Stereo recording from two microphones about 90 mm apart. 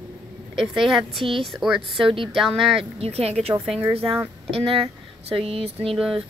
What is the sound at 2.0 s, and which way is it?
Speech, 70° right (ahead or behind).